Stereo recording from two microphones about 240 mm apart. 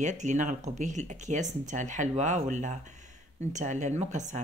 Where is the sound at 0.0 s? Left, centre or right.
Right.